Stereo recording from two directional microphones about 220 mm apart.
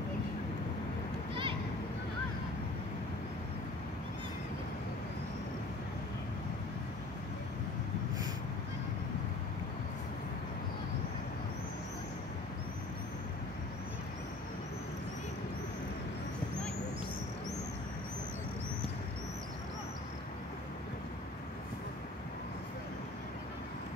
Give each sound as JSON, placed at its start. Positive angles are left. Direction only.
{"t": 1.3, "sound": "children playing", "side_deg": -25}